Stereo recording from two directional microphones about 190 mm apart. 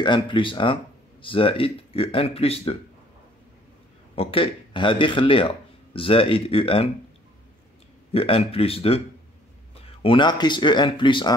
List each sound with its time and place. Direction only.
0.0 s speech: 25° left (ahead or behind)
4.1 s speech: 30° left (ahead or behind)
8.1 s speech: 30° left (ahead or behind)